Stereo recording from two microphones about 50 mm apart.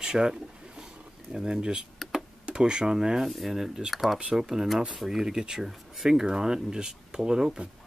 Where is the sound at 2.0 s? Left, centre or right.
Centre.